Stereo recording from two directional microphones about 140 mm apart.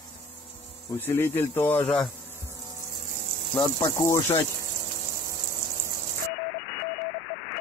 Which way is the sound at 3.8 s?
25° left (ahead or behind).